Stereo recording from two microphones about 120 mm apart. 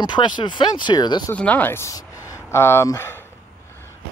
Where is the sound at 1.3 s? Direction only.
15° left (ahead or behind).